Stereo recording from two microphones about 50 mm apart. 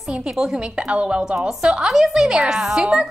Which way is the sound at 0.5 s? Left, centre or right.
Centre.